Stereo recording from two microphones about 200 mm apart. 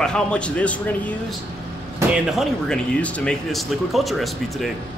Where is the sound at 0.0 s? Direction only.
5° left (ahead or behind).